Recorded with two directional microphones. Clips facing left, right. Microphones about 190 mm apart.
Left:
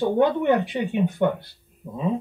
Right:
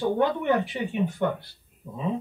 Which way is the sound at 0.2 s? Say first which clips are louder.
Left 4 dB; 20° left (ahead or behind).